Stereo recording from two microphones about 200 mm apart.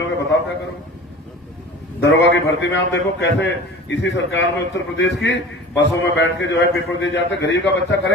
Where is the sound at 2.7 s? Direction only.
65° left (ahead or behind).